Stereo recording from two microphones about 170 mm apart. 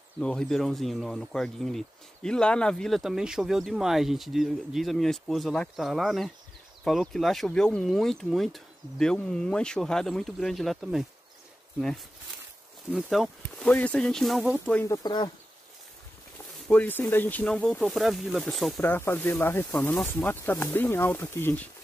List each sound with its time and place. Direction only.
0.2 s speech: 5° left (ahead or behind)
12.9 s speech: centre (ahead or behind)
14.7 s speech: 10° left (ahead or behind)
15.0 s speech: 25° left (ahead or behind)
16.6 s speech: 10° left (ahead or behind)
18.9 s speech: 10° left (ahead or behind)